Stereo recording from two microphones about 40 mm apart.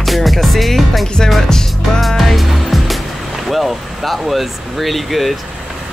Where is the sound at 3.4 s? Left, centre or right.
Centre.